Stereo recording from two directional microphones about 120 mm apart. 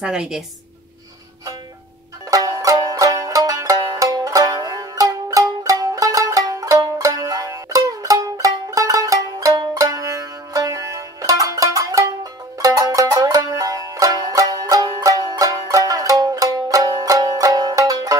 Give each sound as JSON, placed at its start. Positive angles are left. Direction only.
{"t": 0.0, "sound": "speech", "side_deg": -5}
{"t": 2.3, "sound": "banjo", "side_deg": -30}